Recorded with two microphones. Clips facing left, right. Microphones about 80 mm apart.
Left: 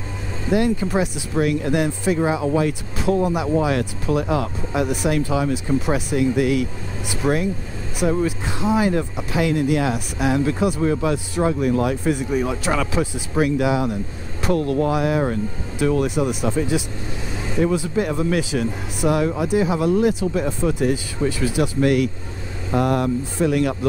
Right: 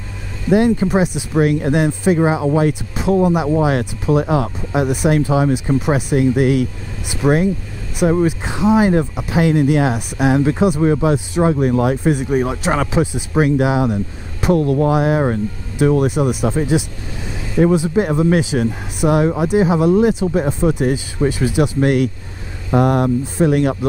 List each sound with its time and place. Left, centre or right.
0.5 s speech: right